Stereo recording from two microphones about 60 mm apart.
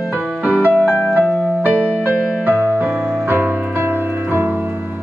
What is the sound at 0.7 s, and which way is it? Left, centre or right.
Music, left.